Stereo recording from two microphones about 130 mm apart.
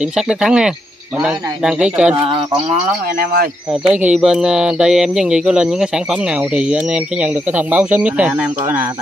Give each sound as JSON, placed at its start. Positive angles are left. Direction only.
{"t": 0.1, "sound": "speech", "side_deg": -5}
{"t": 2.3, "sound": "speech", "side_deg": -40}
{"t": 3.8, "sound": "speech", "side_deg": -5}